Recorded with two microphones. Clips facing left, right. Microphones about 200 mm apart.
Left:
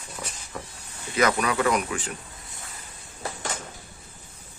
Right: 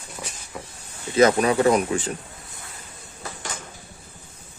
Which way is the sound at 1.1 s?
30° right (ahead or behind).